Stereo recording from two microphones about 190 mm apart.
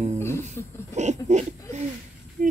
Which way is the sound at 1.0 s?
35° right (ahead or behind).